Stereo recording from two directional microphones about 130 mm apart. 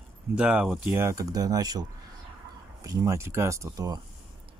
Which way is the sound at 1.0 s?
25° right (ahead or behind).